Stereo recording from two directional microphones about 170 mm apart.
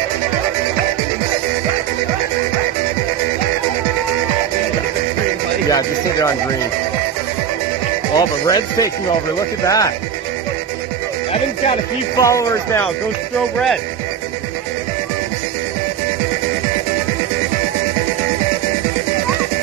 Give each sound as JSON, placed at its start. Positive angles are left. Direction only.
{"t": 5.7, "sound": "speech", "side_deg": 20}
{"t": 8.2, "sound": "speech", "side_deg": 20}
{"t": 12.2, "sound": "speech", "side_deg": 20}